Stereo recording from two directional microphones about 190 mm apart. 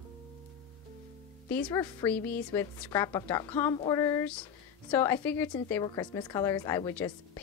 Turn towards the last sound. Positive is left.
turn(degrees=15)  # may be behind; listen again after turning